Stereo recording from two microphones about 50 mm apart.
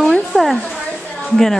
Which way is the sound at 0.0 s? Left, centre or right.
Centre.